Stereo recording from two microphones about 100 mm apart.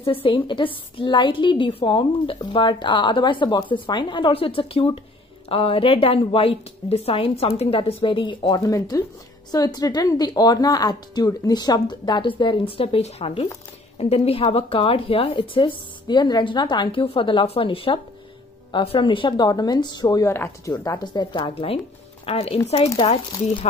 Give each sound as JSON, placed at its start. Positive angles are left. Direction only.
{"t": 0.0, "sound": "a woman's voice", "side_deg": 60}
{"t": 4.3, "sound": "a woman's voice", "side_deg": 70}
{"t": 13.9, "sound": "a woman's voice", "side_deg": 85}
{"t": 14.5, "sound": "a woman's voice", "side_deg": 70}
{"t": 17.0, "sound": "a woman's voice", "side_deg": 60}
{"t": 20.2, "sound": "speech", "side_deg": 25}
{"t": 21.0, "sound": "a woman's voice", "side_deg": 45}
{"t": 22.2, "sound": "a woman's voice", "side_deg": 75}